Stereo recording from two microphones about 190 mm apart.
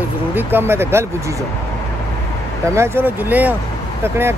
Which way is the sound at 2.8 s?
10° right (ahead or behind).